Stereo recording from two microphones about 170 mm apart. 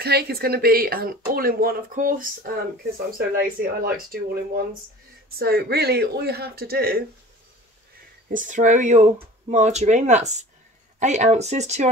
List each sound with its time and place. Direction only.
0.0 s speech: 70° right (ahead or behind)
2.8 s speech: 65° right (ahead or behind)
5.4 s speech: 65° right (ahead or behind)
8.3 s speech: 50° right (ahead or behind)